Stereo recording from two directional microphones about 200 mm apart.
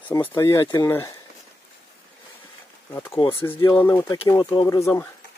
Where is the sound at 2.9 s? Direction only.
10° left (ahead or behind).